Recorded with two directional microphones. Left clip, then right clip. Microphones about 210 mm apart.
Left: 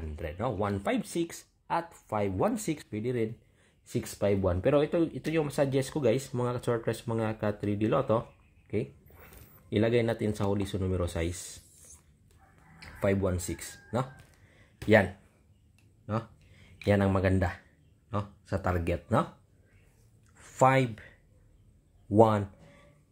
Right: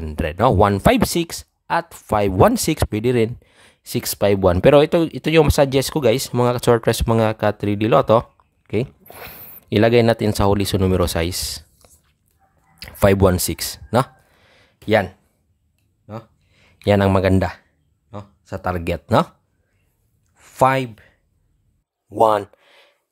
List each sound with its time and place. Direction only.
0.1 s speech: 45° right (ahead or behind)
12.7 s speech: 45° right (ahead or behind)
14.5 s a sound: 25° right (ahead or behind)
16.1 s speech: 10° right (ahead or behind)
16.8 s speech: 40° right (ahead or behind)
18.4 s speech: 25° right (ahead or behind); by 19.2 s 40° right (ahead or behind)
20.5 s speech: 30° right (ahead or behind)
22.2 s a sound: 40° right (ahead or behind)